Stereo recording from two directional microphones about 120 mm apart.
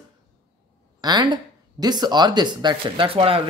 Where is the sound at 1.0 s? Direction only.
35° right (ahead or behind).